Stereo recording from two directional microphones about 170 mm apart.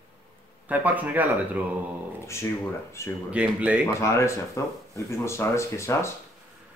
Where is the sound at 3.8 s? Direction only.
15° left (ahead or behind).